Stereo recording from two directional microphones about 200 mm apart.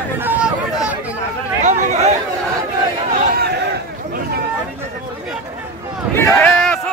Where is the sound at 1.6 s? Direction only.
35° right (ahead or behind).